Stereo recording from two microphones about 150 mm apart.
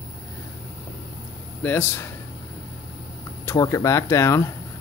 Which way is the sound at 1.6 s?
15° left (ahead or behind).